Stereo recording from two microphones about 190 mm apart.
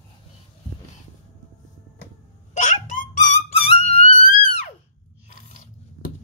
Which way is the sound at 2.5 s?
40° left (ahead or behind).